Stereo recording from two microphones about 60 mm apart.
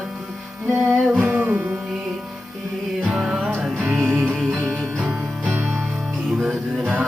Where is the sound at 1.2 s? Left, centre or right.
Right.